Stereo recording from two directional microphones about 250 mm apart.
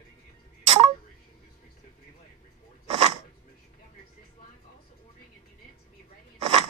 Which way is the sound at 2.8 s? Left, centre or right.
Right.